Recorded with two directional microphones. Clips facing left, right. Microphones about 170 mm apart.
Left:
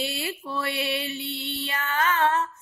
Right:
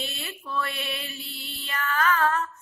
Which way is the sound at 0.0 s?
30° left (ahead or behind).